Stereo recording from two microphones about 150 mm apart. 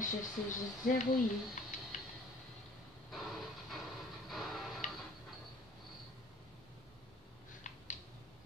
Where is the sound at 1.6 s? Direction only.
55° left (ahead or behind).